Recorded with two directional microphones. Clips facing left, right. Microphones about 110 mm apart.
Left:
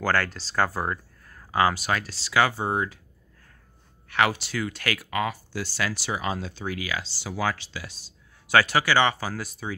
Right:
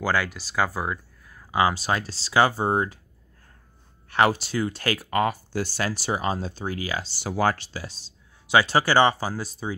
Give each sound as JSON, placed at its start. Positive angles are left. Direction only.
{"t": 0.0, "sound": "speech", "side_deg": -10}
{"t": 1.5, "sound": "speech", "side_deg": -20}
{"t": 1.8, "sound": "speech", "side_deg": -30}
{"t": 4.1, "sound": "speech", "side_deg": -35}
{"t": 7.1, "sound": "speech", "side_deg": -55}
{"t": 7.8, "sound": "a sound", "side_deg": -30}
{"t": 8.7, "sound": "speech", "side_deg": -35}